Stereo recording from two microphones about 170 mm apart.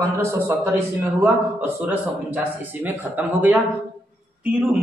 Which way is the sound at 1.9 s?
10° right (ahead or behind).